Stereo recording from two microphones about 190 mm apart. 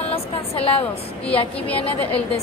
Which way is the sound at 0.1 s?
30° left (ahead or behind).